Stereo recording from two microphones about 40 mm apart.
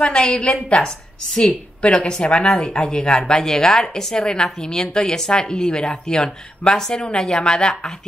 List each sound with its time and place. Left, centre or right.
0.0 s a woman's voice: left